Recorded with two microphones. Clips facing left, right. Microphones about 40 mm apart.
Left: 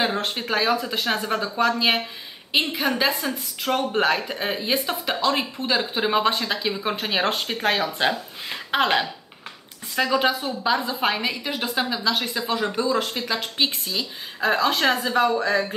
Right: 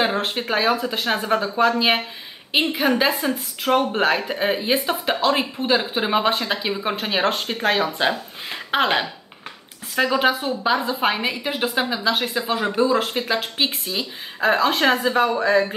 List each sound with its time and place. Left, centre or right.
0.0 s speech: centre